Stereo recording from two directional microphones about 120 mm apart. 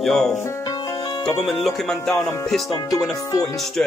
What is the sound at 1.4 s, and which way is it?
Music, centre (ahead or behind).